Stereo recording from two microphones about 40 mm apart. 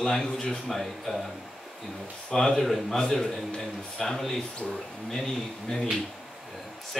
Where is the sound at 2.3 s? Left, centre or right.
Centre.